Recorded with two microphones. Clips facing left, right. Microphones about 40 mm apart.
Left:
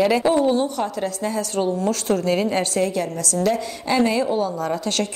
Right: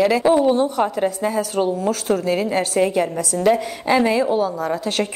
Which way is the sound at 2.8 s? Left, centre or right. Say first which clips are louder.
Right 4 dB; right.